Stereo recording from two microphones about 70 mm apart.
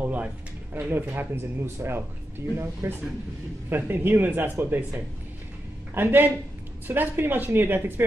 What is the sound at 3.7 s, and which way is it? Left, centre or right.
A man's voice, right.